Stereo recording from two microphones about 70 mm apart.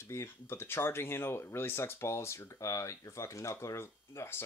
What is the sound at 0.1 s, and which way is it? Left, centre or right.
Speech, left.